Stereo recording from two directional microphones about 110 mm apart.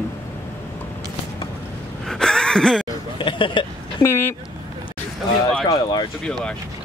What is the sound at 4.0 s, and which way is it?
Speech, 20° left (ahead or behind).